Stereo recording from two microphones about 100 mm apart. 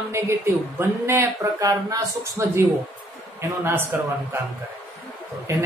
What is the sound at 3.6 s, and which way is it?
Speech, 25° right (ahead or behind).